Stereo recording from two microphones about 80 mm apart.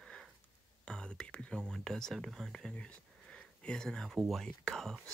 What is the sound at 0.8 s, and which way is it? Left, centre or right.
Speech, centre.